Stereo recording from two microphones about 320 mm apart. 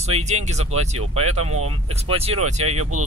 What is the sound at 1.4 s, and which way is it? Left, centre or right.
Speech, right.